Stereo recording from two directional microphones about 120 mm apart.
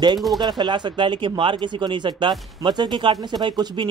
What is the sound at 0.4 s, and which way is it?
Speech, 35° right (ahead or behind).